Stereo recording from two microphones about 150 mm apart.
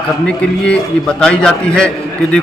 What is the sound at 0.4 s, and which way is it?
A man's voice, 5° left (ahead or behind).